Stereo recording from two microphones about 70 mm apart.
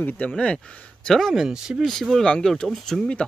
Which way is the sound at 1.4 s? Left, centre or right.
Centre.